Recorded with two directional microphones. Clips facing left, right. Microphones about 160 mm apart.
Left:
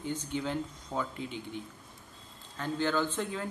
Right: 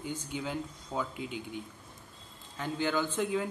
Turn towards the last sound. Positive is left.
turn(degrees=-10)  # may be behind; listen again after turning